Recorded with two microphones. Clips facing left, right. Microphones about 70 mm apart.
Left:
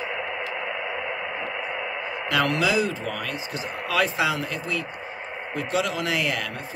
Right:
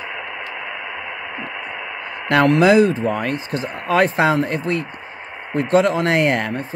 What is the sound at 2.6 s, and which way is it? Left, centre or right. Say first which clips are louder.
Speech: right 10 dB; right.